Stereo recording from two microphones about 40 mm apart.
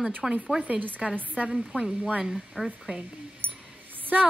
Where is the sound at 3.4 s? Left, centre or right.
Right.